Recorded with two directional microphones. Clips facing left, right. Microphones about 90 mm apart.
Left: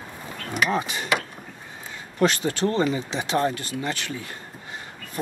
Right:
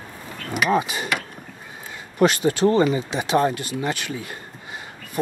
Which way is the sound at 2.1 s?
15° right (ahead or behind).